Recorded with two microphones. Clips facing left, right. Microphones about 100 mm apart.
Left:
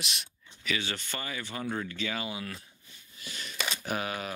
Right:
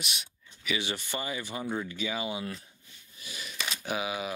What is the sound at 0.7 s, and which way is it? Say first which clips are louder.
Speech: right 4 dB; 15° right (ahead or behind).